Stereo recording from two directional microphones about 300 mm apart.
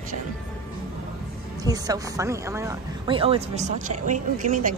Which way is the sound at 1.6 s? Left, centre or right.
Centre.